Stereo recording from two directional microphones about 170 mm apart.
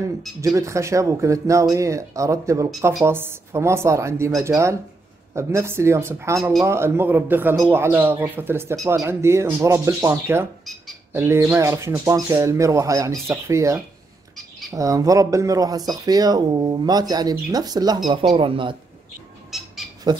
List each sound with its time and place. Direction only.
0.4 s speech: 20° right (ahead or behind)
19.5 s squawk: centre (ahead or behind)